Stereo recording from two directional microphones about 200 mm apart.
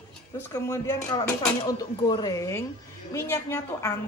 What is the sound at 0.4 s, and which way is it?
Speech, 15° left (ahead or behind).